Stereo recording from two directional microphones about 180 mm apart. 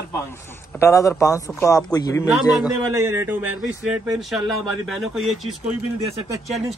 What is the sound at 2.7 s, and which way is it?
Speech, 15° right (ahead or behind).